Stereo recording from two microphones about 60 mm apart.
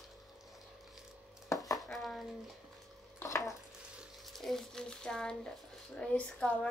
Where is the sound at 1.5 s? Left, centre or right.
Left.